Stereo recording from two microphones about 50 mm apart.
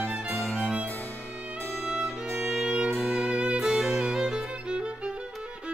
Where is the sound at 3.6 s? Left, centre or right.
Centre.